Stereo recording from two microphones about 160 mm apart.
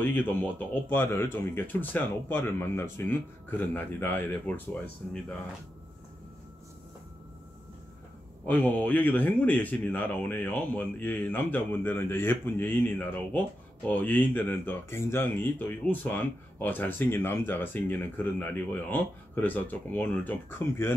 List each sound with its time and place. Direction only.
0.0 s speech: 10° left (ahead or behind)
8.5 s speech: 10° left (ahead or behind)